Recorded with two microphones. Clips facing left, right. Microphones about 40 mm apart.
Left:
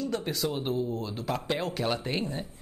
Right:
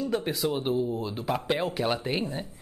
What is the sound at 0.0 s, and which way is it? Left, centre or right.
Speech, centre.